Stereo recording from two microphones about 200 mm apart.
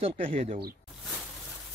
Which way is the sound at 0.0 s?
30° right (ahead or behind).